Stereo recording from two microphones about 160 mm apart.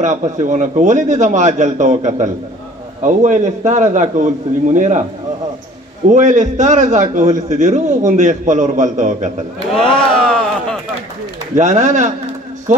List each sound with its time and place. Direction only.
0.0 s a man's voice: 50° right (ahead or behind)
6.0 s a man's voice: 50° right (ahead or behind)
9.8 s a sound: 5° left (ahead or behind)
11.5 s a man's voice: 50° right (ahead or behind)